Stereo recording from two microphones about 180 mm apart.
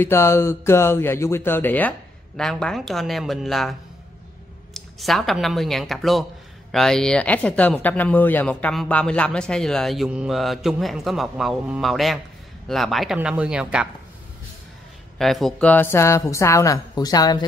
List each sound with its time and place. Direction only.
0.0 s speech: 15° left (ahead or behind)
4.7 s speech: centre (ahead or behind)
15.1 s speech: centre (ahead or behind); by 17.5 s 20° left (ahead or behind)